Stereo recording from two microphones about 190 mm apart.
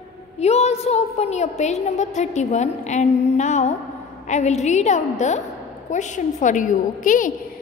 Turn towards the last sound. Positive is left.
turn(degrees=45)  # may be behind; listen again after turning